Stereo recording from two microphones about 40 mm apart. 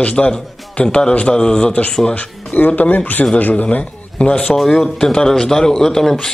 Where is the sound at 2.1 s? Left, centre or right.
Left.